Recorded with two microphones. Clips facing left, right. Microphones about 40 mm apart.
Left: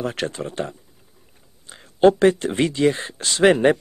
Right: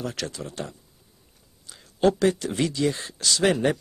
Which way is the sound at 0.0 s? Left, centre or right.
Left.